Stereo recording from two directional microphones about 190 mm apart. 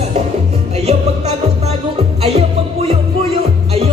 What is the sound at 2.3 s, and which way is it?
Music, 35° right (ahead or behind).